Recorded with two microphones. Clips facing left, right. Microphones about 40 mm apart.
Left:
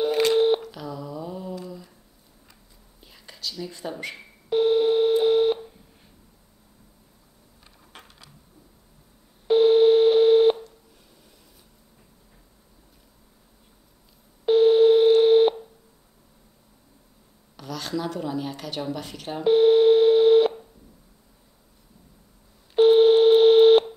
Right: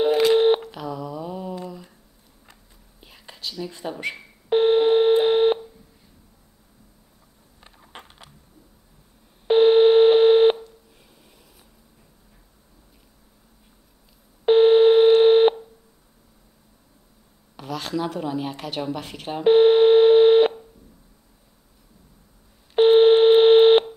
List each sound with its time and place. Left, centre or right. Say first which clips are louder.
0.3 s busy signal: right 3 dB; right
3.0 s whispering: right 1 dB; right
3.8 s speech: right 1 dB; centre
4.5 s telephone dialing: right 3 dB; right
7.6 s coin: right 5 dB; right
9.5 s telephone dialing: right 2 dB; right
14.4 s telephone dialing: right 2 dB; right
17.6 s a woman's voice: right 3 dB; right
19.4 s telephone dialing: right 2 dB; right
22.8 s telephone dialing: right 2 dB; right